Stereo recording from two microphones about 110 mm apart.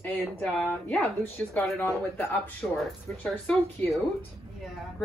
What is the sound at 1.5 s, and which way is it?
Speech, 25° left (ahead or behind).